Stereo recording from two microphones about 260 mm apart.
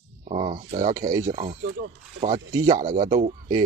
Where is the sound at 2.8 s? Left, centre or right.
Right.